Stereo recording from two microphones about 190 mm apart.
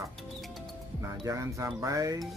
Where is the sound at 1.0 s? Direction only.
15° right (ahead or behind).